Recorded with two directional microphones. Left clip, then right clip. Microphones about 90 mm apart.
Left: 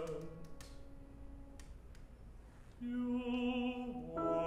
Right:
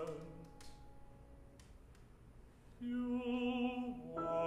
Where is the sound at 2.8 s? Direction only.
30° right (ahead or behind).